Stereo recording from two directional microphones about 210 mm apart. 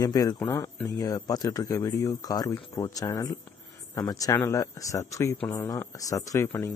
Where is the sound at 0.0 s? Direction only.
20° left (ahead or behind).